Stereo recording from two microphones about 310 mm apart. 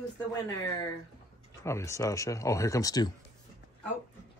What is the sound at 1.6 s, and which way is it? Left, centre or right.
Speech, centre.